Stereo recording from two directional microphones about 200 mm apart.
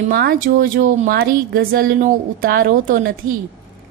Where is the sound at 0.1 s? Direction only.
50° right (ahead or behind).